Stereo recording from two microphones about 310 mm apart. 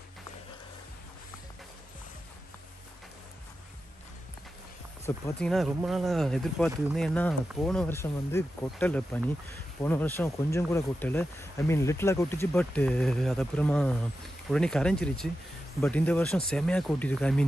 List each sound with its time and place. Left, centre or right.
5.0 s speech: centre